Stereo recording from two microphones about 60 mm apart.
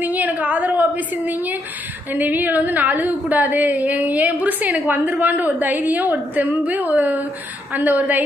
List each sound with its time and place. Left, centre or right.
0.0 s a woman's voice: right